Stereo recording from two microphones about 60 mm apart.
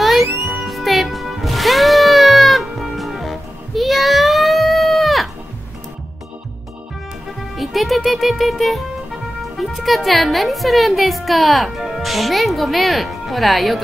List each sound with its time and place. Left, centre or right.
0.0 s music: centre
7.5 s a child's voice: centre